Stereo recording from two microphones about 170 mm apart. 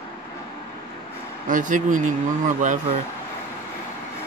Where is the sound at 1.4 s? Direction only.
50° right (ahead or behind).